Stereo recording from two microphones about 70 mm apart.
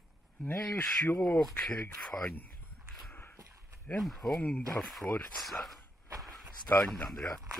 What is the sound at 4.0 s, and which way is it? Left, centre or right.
Speech, centre.